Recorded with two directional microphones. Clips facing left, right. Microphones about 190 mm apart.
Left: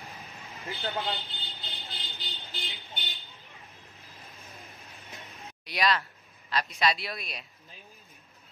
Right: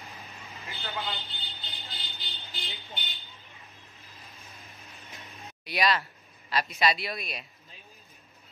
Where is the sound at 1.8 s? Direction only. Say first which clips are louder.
Left 1 dB; 15° left (ahead or behind).